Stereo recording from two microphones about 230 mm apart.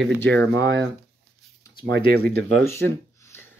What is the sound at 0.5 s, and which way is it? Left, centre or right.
Speech, right.